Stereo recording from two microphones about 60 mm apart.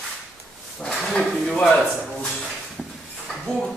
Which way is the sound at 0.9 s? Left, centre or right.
Centre.